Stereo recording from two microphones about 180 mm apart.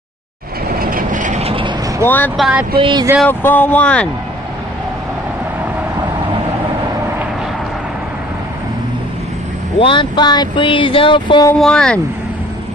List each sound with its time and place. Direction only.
0.7 s vehicle: 50° right (ahead or behind); by 1.7 s 30° right (ahead or behind)
2.0 s speech: 10° left (ahead or behind)
2.3 s speech: centre (ahead or behind)
2.8 s speech: 25° right (ahead or behind)
3.3 s speech: 10° left (ahead or behind)
9.8 s speech: 30° left (ahead or behind)
11.6 s speech: 5° left (ahead or behind)